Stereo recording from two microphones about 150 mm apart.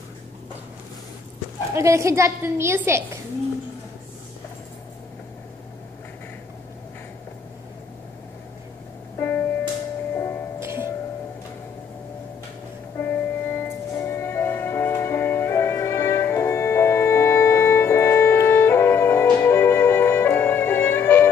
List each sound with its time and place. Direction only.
1.8 s a woman's voice: 20° right (ahead or behind)
9.2 s music: 15° left (ahead or behind)
10.6 s music: 15° right (ahead or behind)
13.0 s music: 15° left (ahead or behind)